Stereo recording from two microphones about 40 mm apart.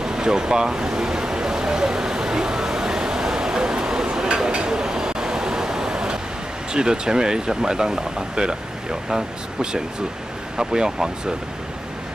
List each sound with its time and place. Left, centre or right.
0.0 s a sound: centre
4.5 s vehicle: right
6.7 s speech: centre